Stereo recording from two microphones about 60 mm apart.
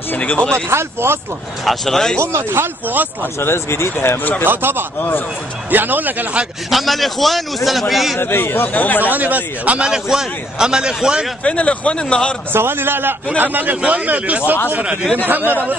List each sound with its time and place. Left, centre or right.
0.1 s speech: left
0.7 s speech: right
1.7 s speech: centre
2.1 s speech: right
3.3 s speech: left
4.5 s a man's voice: right
6.7 s a man's voice: centre
8.2 s speech: left
9.1 s a man's voice: right
9.8 s a man's voice: centre
11.4 s speech: centre
12.5 s a man's voice: right